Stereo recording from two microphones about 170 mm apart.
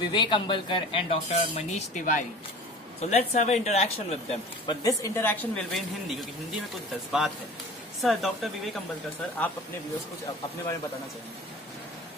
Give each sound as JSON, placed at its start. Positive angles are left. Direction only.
{"t": 0.0, "sound": "speech", "side_deg": 25}
{"t": 4.6, "sound": "a woman's voice", "side_deg": 20}
{"t": 5.7, "sound": "speech", "side_deg": 0}